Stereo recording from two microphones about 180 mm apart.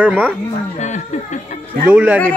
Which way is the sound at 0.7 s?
40° left (ahead or behind).